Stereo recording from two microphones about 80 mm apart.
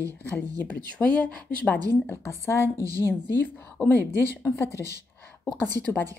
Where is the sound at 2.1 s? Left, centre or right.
Left.